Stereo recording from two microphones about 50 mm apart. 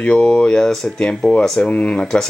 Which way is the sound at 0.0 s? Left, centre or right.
Left.